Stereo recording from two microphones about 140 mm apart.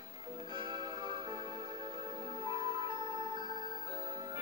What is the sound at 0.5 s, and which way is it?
Music, 35° right (ahead or behind).